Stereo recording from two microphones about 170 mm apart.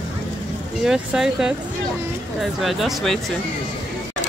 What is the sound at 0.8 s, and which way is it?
Speech, 5° right (ahead or behind).